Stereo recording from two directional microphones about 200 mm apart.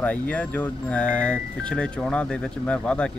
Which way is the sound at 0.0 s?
5° left (ahead or behind).